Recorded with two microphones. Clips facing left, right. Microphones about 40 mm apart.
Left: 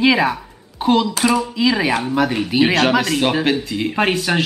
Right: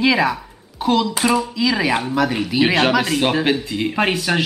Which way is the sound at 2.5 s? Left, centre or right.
Centre.